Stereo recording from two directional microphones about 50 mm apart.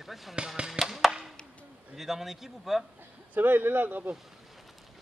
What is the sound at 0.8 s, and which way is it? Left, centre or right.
Chop, centre.